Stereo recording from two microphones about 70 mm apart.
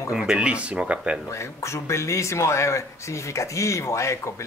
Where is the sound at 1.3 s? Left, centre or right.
Left.